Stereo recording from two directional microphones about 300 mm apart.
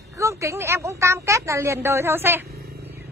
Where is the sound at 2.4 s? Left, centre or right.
Right.